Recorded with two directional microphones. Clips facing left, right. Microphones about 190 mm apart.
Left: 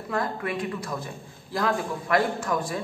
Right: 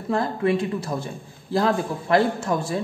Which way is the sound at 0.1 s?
25° right (ahead or behind).